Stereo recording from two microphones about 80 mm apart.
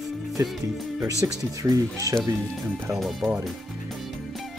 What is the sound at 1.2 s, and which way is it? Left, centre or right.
Speech, right.